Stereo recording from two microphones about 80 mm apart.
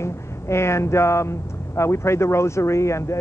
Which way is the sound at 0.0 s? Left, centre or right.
Left.